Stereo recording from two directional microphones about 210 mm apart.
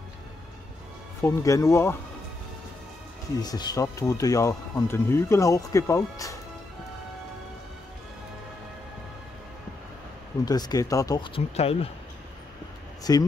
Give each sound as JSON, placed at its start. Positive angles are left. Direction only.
{"t": 1.2, "sound": "speech", "side_deg": 15}
{"t": 3.3, "sound": "speech", "side_deg": 20}
{"t": 10.4, "sound": "speech", "side_deg": 20}
{"t": 13.1, "sound": "speech", "side_deg": 15}